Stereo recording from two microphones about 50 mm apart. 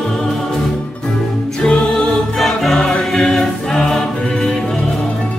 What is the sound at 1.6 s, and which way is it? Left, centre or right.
Music, centre.